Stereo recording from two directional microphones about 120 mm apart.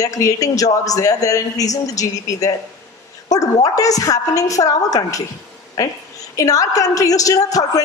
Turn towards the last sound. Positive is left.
turn(degrees=30)  # may be behind; listen again after turning